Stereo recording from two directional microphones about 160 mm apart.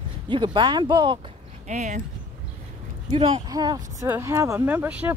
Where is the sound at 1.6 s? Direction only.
50° right (ahead or behind).